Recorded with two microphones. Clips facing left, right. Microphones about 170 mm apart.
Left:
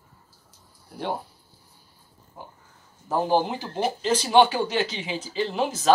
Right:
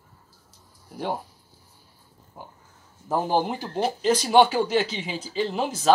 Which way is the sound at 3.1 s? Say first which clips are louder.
Left 1 dB; 5° right (ahead or behind).